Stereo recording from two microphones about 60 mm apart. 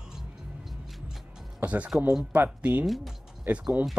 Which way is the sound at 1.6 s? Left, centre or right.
Right.